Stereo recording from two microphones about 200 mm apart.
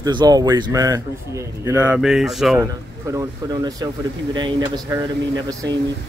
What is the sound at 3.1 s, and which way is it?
A man's voice, 20° right (ahead or behind).